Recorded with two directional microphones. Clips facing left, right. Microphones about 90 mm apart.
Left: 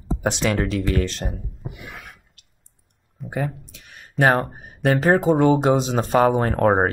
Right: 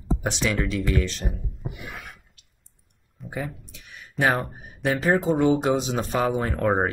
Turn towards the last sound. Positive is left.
turn(degrees=45)  # may be behind; listen again after turning